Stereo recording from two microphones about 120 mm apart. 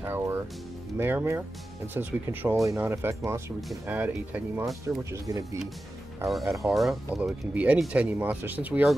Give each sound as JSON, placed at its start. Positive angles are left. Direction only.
{"t": 0.0, "sound": "music", "side_deg": -20}
{"t": 0.9, "sound": "speech", "side_deg": -20}
{"t": 4.8, "sound": "speech", "side_deg": -25}
{"t": 6.3, "sound": "speech", "side_deg": 0}
{"t": 7.2, "sound": "speech", "side_deg": -10}